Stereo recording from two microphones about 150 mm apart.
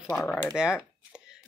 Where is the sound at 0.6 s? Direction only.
5° right (ahead or behind).